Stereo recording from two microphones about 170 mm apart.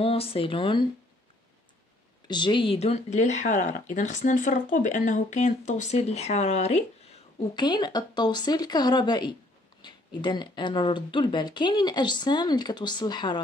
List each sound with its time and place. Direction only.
0.0 s speech: 35° left (ahead or behind)
2.2 s speech: 25° left (ahead or behind)
7.5 s speech: 25° left (ahead or behind)